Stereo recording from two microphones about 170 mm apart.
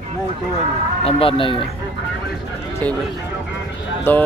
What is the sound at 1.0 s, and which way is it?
Speech, 30° left (ahead or behind).